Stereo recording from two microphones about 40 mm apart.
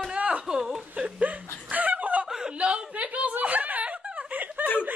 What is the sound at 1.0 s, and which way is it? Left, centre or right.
Speech, right.